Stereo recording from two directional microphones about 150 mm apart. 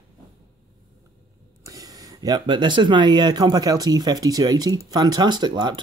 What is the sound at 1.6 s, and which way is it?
Speech, 25° right (ahead or behind).